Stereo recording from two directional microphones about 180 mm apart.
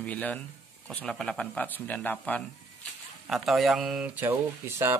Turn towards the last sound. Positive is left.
turn(degrees=-15)  # may be behind; listen again after turning